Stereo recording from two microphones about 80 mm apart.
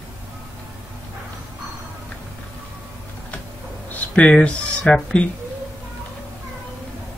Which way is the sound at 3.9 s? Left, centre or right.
Centre.